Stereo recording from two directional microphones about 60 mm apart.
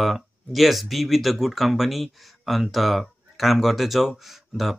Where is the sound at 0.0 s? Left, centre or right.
Centre.